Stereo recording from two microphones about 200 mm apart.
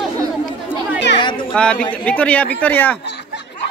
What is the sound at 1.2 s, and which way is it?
Speech, 25° left (ahead or behind).